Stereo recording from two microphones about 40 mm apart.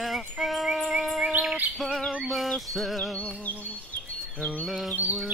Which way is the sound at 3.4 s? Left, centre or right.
Left.